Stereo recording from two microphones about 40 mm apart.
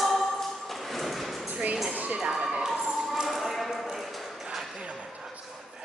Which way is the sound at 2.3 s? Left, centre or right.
Centre.